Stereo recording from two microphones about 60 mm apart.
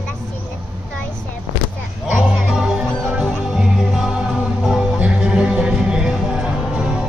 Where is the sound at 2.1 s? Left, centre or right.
Centre.